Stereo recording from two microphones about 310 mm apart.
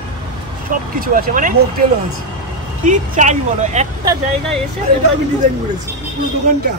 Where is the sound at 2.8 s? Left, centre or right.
Right.